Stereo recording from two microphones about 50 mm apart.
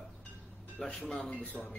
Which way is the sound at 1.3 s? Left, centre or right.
Left.